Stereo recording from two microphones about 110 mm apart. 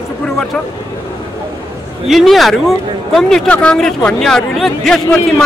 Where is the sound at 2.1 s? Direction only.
Centre (ahead or behind).